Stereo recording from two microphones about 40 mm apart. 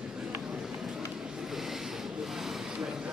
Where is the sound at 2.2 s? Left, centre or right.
Centre.